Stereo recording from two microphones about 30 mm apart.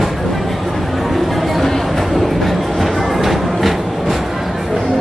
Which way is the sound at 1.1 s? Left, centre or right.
Centre.